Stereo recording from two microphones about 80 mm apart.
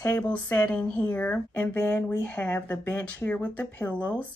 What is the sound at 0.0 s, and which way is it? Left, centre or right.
Speech, left.